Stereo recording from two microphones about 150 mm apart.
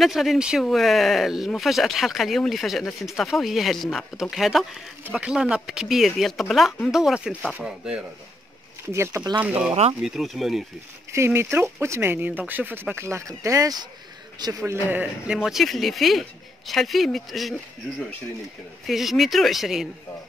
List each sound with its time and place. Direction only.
0.0 s speech: centre (ahead or behind)
8.9 s speech: 20° right (ahead or behind); by 10.6 s centre (ahead or behind)
11.1 s speech: 15° right (ahead or behind)